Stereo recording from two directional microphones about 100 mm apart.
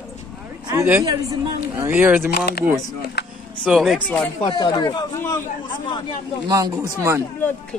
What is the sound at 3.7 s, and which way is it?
Speech, centre (ahead or behind).